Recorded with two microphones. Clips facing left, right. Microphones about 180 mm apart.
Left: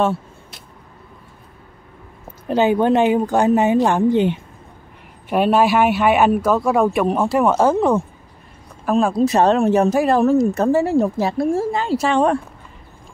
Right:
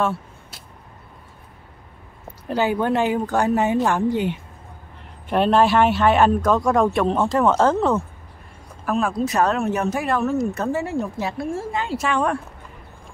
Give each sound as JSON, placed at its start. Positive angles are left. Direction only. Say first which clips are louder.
{"t": 2.4, "sound": "a woman's voice", "louder": "left 5 dB", "side_deg": 20}
{"t": 5.3, "sound": "a man's voice", "louder": "left 1 dB", "side_deg": 10}
{"t": 8.8, "sound": "speech", "louder": "left 5 dB", "side_deg": 30}